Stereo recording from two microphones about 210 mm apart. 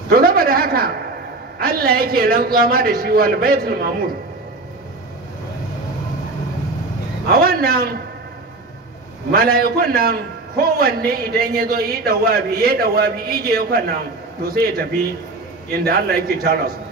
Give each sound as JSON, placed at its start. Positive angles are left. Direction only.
{"t": 0.1, "sound": "a sound", "side_deg": -45}
{"t": 1.6, "sound": "a man's voice", "side_deg": -45}
{"t": 7.3, "sound": "a man's voice", "side_deg": -45}
{"t": 9.3, "sound": "a man's voice", "side_deg": -45}